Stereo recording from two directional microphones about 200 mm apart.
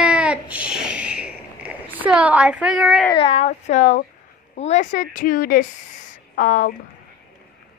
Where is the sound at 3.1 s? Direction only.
30° left (ahead or behind).